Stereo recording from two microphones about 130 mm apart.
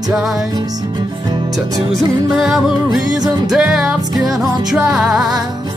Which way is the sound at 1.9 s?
5° right (ahead or behind).